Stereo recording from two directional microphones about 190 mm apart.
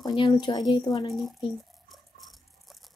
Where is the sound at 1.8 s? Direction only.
Centre (ahead or behind).